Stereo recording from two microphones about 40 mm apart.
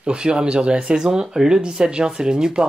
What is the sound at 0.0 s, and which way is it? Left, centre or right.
Speech, right.